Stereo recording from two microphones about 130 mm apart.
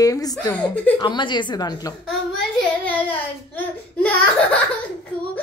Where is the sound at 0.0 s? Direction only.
30° left (ahead or behind).